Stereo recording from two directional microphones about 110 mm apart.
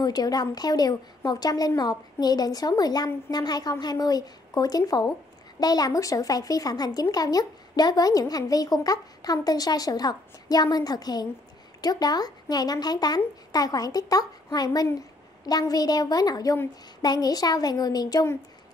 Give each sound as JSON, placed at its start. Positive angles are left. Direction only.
{"t": 0.0, "sound": "speech", "side_deg": 35}